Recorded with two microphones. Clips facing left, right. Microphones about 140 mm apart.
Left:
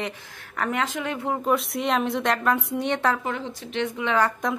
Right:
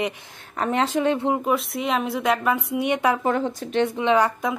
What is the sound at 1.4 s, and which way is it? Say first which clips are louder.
A woman's voice: even; centre (ahead or behind).